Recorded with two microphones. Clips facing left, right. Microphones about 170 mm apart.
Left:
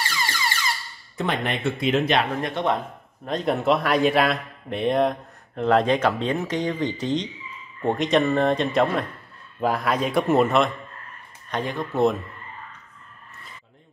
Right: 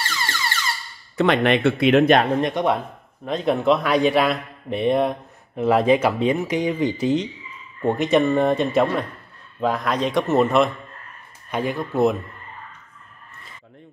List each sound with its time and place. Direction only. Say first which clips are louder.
1.1 s speech: right 8 dB; 80° right; by 2.2 s 55° right (ahead or behind)
2.4 s speech: right 3 dB; 15° right (ahead or behind)
3.3 s speech: right 3 dB; centre (ahead or behind)